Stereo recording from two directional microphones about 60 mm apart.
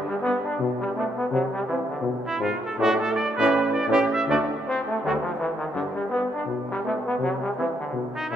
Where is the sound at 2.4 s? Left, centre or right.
Centre.